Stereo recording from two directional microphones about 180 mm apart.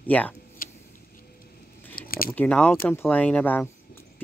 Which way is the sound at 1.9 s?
50° left (ahead or behind).